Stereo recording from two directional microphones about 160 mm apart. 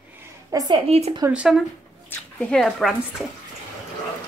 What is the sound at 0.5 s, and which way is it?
Speech, 20° right (ahead or behind).